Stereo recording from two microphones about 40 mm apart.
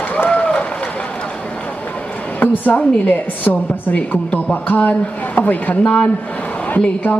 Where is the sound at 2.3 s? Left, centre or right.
Left.